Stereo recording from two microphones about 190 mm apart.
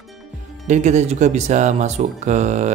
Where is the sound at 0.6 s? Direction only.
40° right (ahead or behind).